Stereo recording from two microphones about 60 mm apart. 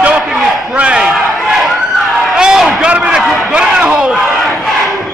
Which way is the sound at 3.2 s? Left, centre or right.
Centre.